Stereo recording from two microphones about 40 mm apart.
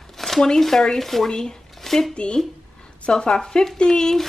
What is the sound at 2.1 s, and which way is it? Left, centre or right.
Speech, left.